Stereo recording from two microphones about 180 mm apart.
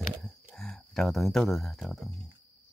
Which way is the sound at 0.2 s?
Centre (ahead or behind).